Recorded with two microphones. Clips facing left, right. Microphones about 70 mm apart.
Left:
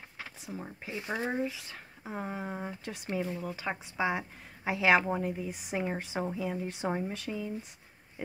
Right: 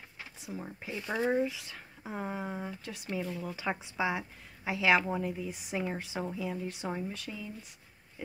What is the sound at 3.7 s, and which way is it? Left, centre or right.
Speech, centre.